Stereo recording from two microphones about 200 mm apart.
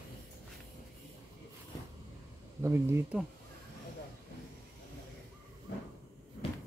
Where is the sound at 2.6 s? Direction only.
10° right (ahead or behind).